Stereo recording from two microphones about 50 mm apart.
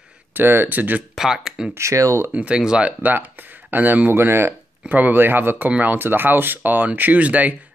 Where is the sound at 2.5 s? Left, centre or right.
Centre.